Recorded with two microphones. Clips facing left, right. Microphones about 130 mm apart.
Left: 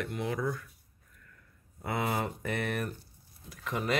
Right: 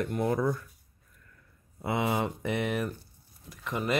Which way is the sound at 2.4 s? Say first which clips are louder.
Right 3 dB; 15° right (ahead or behind).